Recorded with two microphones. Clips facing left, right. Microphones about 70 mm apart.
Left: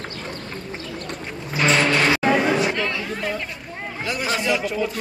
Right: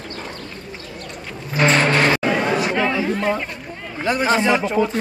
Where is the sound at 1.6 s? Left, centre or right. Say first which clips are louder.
Right 2 dB; right.